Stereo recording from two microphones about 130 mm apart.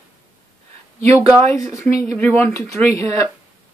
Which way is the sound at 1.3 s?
20° left (ahead or behind).